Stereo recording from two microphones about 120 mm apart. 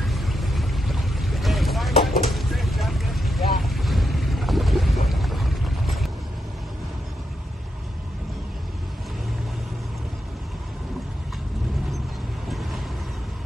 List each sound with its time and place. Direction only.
0.0 s boat: centre (ahead or behind)
2.2 s vehicle: centre (ahead or behind)